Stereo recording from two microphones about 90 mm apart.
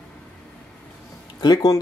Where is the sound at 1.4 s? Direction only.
50° left (ahead or behind).